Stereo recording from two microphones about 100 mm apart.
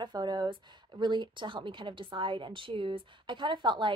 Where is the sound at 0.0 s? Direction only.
45° right (ahead or behind).